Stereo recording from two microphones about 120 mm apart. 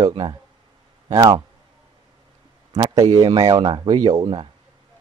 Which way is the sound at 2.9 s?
35° right (ahead or behind).